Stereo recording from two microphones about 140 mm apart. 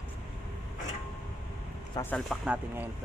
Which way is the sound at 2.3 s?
10° right (ahead or behind).